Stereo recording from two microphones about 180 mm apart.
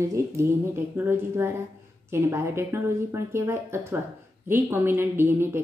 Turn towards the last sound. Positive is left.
turn(degrees=-15)  # may be behind; listen again after turning